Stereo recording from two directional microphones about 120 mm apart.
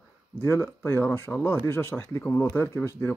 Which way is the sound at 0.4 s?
20° left (ahead or behind).